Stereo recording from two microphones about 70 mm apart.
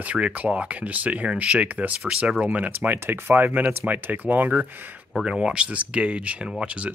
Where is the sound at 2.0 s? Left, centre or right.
Centre.